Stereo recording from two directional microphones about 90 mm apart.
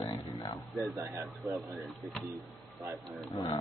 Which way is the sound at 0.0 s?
40° left (ahead or behind).